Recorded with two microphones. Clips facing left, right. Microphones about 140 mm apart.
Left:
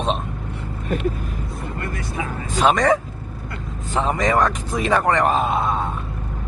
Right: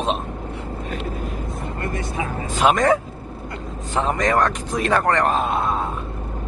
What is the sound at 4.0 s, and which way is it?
Speech, centre (ahead or behind).